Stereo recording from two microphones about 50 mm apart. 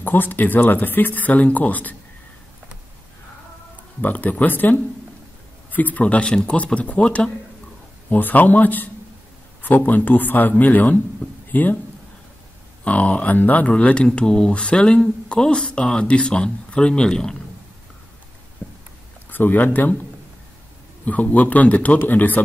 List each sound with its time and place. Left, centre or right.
0.0 s speech: left
4.0 s speech: left
6.2 s speech: centre
6.5 s speech: left
8.1 s speech: left
12.8 s speech: left
18.6 s a sound: left
19.3 s speech: left
21.0 s speech: left